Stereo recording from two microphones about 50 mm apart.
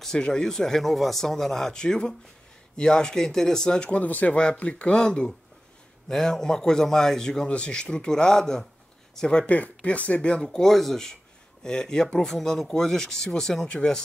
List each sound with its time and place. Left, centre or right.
0.2 s a man's voice: centre
4.0 s a man's voice: left; by 9.5 s centre
9.5 s a man's voice: left; by 13.7 s centre